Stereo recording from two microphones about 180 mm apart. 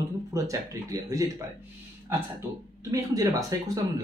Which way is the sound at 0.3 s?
15° right (ahead or behind).